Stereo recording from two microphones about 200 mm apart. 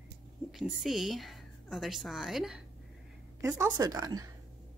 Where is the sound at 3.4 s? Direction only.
15° right (ahead or behind).